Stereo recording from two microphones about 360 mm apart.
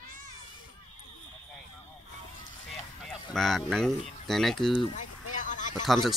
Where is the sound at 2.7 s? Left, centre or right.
Centre.